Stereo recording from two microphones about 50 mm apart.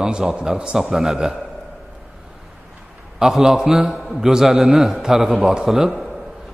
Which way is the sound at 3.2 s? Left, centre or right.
Centre.